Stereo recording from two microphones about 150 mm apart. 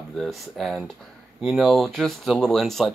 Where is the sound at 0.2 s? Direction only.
Centre (ahead or behind).